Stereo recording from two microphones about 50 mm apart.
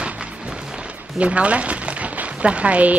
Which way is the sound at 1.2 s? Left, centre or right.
Right.